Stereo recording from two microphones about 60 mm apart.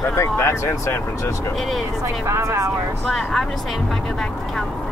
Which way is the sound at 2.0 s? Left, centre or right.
Right.